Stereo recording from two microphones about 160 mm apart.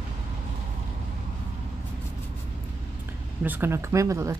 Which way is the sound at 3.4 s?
10° right (ahead or behind).